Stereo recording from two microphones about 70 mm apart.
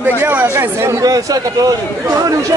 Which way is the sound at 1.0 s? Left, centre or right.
Right.